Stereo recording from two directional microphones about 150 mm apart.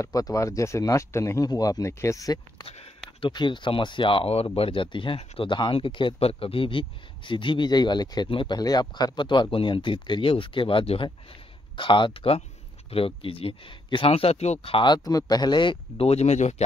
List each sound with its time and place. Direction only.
0.0 s speech: 25° left (ahead or behind)
2.6 s speech: 40° left (ahead or behind)
3.2 s speech: 30° left (ahead or behind); by 16.6 s 50° left (ahead or behind)